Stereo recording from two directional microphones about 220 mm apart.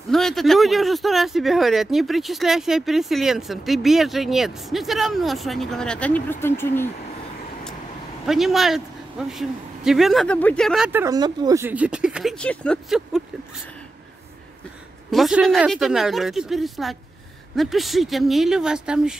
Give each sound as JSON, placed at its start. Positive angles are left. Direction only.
{"t": 0.1, "sound": "speech", "side_deg": 0}
{"t": 8.3, "sound": "speech", "side_deg": 0}
{"t": 15.0, "sound": "speech", "side_deg": 0}